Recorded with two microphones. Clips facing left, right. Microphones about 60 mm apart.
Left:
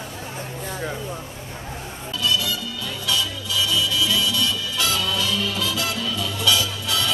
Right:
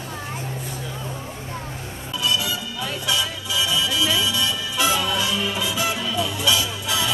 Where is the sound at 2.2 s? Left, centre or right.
Centre.